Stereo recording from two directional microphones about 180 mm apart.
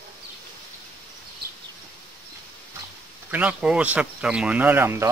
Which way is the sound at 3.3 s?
5° right (ahead or behind).